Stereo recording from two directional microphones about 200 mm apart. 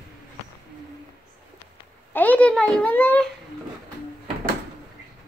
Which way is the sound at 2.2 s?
5° left (ahead or behind).